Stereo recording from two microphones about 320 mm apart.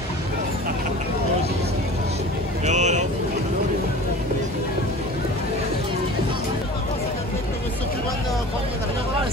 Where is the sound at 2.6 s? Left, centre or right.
Right.